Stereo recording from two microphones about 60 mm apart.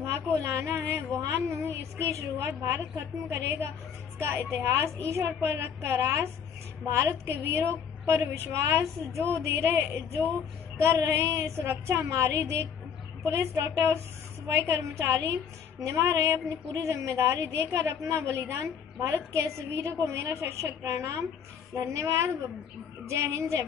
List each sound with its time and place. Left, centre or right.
0.0 s a woman's voice: right
15.8 s a woman's voice: right